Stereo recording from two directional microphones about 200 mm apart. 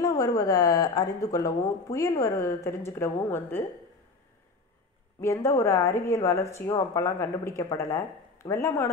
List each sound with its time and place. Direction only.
0.0 s speech: 15° left (ahead or behind)
5.2 s speech: 15° left (ahead or behind)